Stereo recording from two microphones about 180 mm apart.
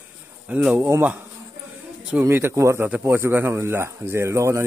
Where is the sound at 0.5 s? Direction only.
5° right (ahead or behind).